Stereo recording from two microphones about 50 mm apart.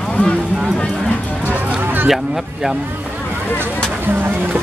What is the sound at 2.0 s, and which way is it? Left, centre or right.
Speech, centre.